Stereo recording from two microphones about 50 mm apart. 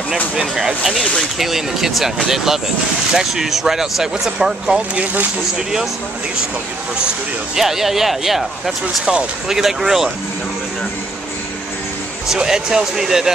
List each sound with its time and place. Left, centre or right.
0.6 s speech: centre
4.9 s speech: right
7.5 s speech: centre
12.4 s speech: centre